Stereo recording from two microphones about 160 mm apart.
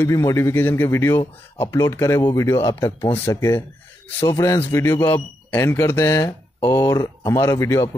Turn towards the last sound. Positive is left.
turn(degrees=15)  # may be behind; listen again after turning